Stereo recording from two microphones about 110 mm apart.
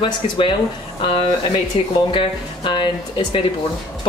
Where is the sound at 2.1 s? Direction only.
45° left (ahead or behind).